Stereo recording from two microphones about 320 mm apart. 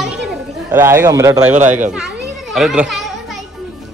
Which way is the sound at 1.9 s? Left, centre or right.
Centre.